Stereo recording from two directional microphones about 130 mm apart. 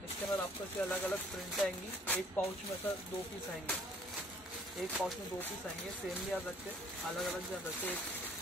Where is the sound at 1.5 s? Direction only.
5° left (ahead or behind).